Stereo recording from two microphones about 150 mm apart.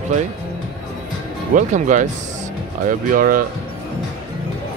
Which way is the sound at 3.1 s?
70° right (ahead or behind).